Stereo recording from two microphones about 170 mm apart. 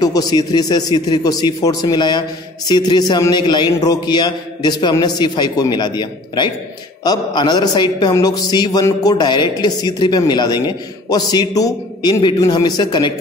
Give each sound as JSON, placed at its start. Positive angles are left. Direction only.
{"t": 0.0, "sound": "a man's voice", "side_deg": 20}